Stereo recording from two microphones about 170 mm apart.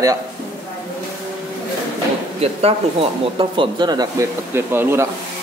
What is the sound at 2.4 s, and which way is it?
A man's voice, 35° right (ahead or behind).